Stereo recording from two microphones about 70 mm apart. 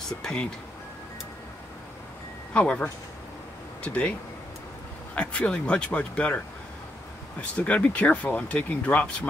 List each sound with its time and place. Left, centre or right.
0.2 s speech: centre
2.5 s speech: centre
5.1 s speech: centre
7.5 s speech: centre